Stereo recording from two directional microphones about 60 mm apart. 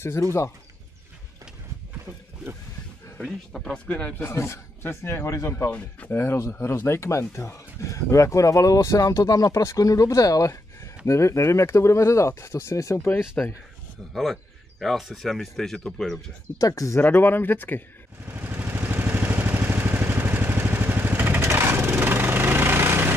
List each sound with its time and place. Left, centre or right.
0.2 s speech: left
3.6 s speech: centre
4.2 s speech: left
5.7 s speech: left
6.1 s speech: left
13.4 s speech: left
14.1 s speech: centre
16.5 s speech: left
17.0 s speech: left
18.2 s vehicle: right